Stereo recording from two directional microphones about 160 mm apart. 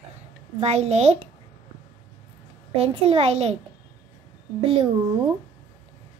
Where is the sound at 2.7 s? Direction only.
35° right (ahead or behind).